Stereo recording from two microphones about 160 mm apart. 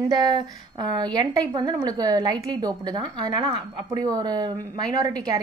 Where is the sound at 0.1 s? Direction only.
30° right (ahead or behind).